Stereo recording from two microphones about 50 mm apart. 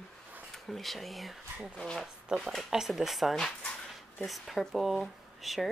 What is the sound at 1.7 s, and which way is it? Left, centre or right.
Speech, centre.